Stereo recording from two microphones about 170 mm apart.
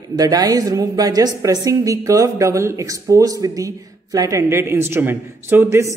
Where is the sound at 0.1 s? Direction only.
20° right (ahead or behind).